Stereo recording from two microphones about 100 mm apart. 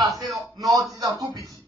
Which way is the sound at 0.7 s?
35° right (ahead or behind).